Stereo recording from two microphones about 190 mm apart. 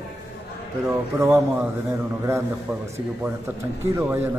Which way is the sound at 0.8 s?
15° right (ahead or behind).